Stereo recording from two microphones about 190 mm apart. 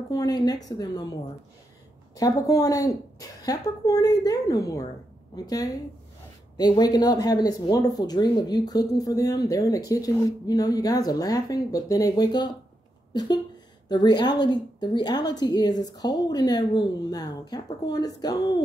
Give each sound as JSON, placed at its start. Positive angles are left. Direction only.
{"t": 0.1, "sound": "speech", "side_deg": 20}
{"t": 2.1, "sound": "speech", "side_deg": 20}
{"t": 13.8, "sound": "speech", "side_deg": 20}